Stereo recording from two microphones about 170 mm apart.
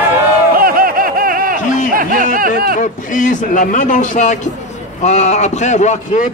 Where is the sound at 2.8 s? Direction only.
50° left (ahead or behind).